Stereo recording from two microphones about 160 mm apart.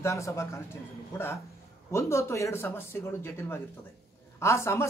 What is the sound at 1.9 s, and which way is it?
Speech, 15° left (ahead or behind).